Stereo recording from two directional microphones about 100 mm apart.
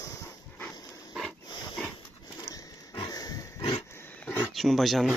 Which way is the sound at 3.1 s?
40° left (ahead or behind).